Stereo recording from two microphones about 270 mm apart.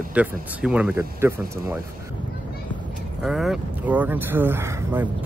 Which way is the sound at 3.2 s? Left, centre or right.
Centre.